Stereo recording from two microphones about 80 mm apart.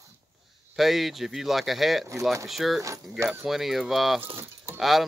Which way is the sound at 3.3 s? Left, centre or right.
Centre.